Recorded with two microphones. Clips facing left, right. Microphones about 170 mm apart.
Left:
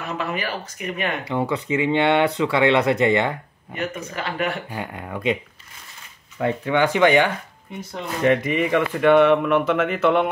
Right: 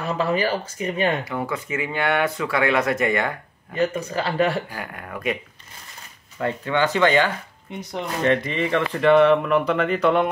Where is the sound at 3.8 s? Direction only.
35° right (ahead or behind).